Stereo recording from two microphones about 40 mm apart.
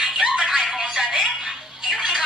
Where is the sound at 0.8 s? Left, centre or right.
Centre.